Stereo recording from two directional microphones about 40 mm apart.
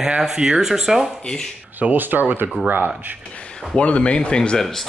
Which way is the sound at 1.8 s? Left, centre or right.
Right.